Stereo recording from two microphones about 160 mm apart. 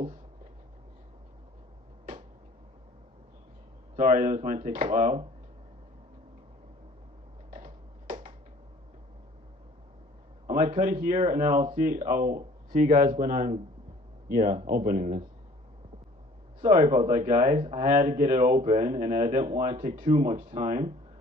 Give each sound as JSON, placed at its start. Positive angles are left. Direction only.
{"t": 3.9, "sound": "speech", "side_deg": -50}
{"t": 7.5, "sound": "a sound", "side_deg": -55}
{"t": 10.4, "sound": "a sound", "side_deg": -50}
{"t": 10.8, "sound": "speech", "side_deg": -50}
{"t": 16.6, "sound": "speech", "side_deg": -45}
{"t": 19.8, "sound": "speech", "side_deg": -50}